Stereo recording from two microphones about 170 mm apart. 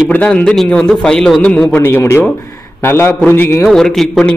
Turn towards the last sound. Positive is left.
turn(degrees=5)  # may be behind; listen again after turning